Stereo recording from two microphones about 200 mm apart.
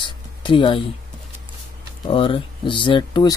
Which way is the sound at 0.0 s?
25° left (ahead or behind).